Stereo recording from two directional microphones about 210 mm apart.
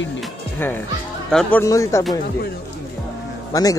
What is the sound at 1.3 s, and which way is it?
Speech, 10° left (ahead or behind).